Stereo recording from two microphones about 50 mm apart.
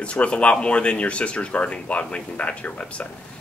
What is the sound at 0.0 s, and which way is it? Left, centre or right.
Speech, left.